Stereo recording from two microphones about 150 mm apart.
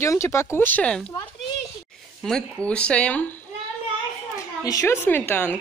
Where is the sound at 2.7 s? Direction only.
10° left (ahead or behind).